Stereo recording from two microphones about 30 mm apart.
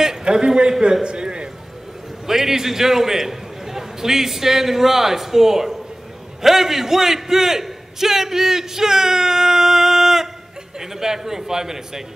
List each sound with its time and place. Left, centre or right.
0.2 s a man's voice: right
1.0 s a sound: right
2.2 s a man's voice: centre